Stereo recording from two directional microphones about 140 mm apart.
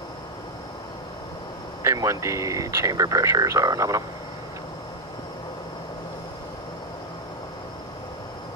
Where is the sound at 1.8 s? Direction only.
20° right (ahead or behind).